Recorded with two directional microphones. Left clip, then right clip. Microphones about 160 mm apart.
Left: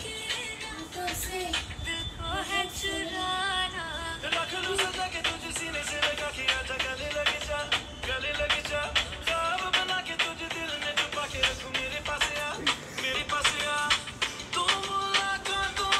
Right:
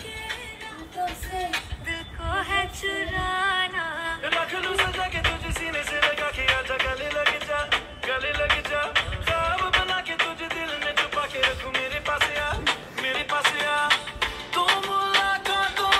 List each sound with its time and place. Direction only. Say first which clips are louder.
1.9 s music: right 6 dB; 35° right (ahead or behind)